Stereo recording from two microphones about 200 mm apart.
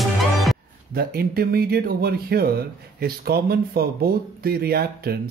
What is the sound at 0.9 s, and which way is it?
Speech, 50° right (ahead or behind).